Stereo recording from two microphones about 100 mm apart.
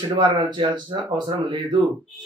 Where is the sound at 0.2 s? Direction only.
50° right (ahead or behind).